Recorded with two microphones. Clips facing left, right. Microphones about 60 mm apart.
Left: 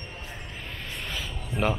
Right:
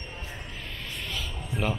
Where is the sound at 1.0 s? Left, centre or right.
Centre.